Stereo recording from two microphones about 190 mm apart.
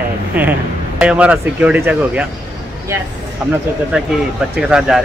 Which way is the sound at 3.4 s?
5° right (ahead or behind).